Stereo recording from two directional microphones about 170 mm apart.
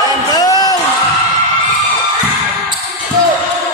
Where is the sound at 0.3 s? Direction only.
20° left (ahead or behind).